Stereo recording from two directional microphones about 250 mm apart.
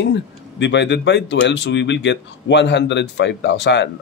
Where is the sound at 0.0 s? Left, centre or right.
Left.